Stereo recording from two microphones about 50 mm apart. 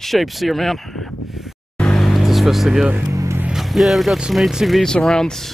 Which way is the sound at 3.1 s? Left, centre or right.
Right.